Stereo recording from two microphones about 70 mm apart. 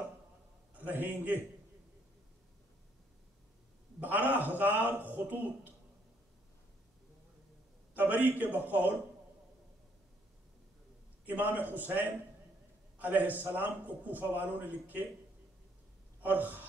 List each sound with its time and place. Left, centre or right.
0.7 s a man's voice: right
4.0 s a man's voice: right
7.9 s a man's voice: right
11.2 s a man's voice: right
16.2 s speech: right